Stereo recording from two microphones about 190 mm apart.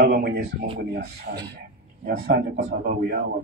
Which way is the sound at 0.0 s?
55° right (ahead or behind).